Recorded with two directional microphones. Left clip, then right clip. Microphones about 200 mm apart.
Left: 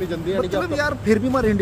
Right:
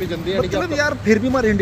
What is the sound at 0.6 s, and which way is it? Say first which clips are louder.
A man's voice: right 2 dB; 10° right (ahead or behind).